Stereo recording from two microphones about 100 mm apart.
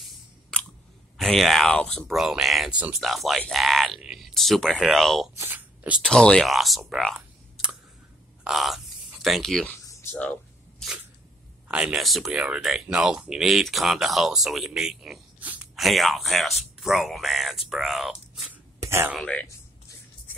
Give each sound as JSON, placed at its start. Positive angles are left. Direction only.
{"t": 0.5, "sound": "scissors", "side_deg": 10}
{"t": 1.1, "sound": "speech", "side_deg": 0}
{"t": 8.5, "sound": "speech", "side_deg": 0}
{"t": 10.1, "sound": "speech", "side_deg": 15}
{"t": 11.6, "sound": "speech", "side_deg": -10}
{"t": 15.4, "sound": "a sound", "side_deg": -15}
{"t": 15.7, "sound": "speech", "side_deg": 0}
{"t": 18.8, "sound": "a sound", "side_deg": -25}
{"t": 19.1, "sound": "speech", "side_deg": 10}